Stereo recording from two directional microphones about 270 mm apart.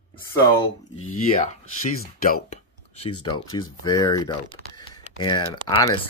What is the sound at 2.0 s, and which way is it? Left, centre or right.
Speech, left.